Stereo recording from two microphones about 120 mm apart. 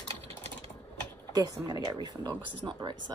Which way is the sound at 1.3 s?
30° right (ahead or behind).